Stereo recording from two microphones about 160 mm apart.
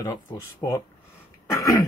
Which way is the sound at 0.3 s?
20° left (ahead or behind).